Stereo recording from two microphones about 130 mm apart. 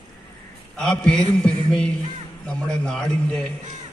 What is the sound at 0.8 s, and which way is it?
A man's voice, 5° left (ahead or behind).